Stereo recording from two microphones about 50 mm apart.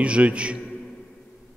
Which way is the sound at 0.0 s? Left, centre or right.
Right.